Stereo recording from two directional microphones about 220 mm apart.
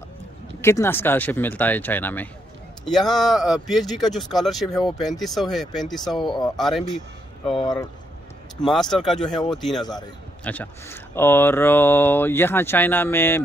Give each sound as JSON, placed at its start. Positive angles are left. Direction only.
{"t": 0.6, "sound": "speech", "side_deg": 10}
{"t": 7.4, "sound": "speech", "side_deg": 25}
{"t": 8.6, "sound": "speech", "side_deg": 0}